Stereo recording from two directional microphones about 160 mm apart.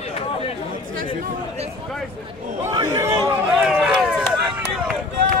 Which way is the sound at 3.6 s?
5° right (ahead or behind).